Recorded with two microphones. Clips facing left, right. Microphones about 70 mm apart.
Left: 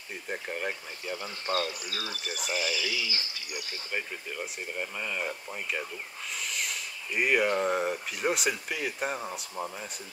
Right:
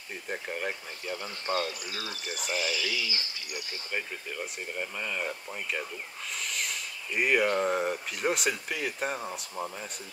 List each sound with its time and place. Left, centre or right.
0.1 s speech: centre
1.4 s speech: right
2.0 s speech: left
3.9 s speech: centre